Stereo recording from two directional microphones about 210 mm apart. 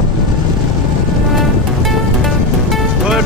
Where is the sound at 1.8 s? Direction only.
Centre (ahead or behind).